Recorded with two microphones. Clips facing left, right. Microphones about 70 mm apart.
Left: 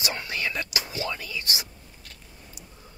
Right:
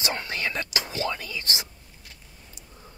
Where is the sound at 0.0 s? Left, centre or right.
Right.